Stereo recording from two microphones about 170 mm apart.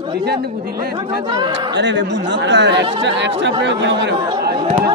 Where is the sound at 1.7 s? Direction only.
90° right.